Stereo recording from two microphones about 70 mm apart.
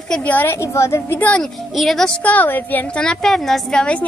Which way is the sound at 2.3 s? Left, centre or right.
Left.